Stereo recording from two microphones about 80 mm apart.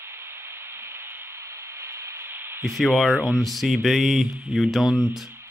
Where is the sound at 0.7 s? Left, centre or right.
Right.